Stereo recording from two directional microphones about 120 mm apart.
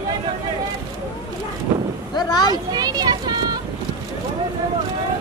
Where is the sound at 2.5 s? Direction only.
35° right (ahead or behind).